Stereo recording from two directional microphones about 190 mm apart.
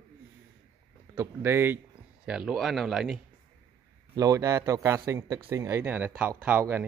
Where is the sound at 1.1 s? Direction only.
15° right (ahead or behind).